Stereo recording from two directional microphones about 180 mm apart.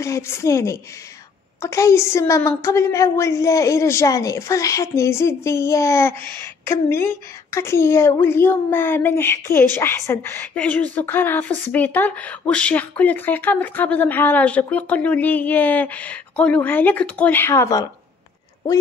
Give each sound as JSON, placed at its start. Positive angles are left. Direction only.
{"t": 0.0, "sound": "a woman's voice", "side_deg": 15}